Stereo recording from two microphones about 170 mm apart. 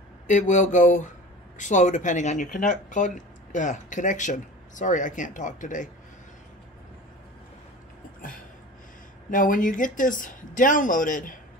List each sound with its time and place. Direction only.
0.3 s speech: 45° left (ahead or behind)
9.3 s speech: 50° left (ahead or behind)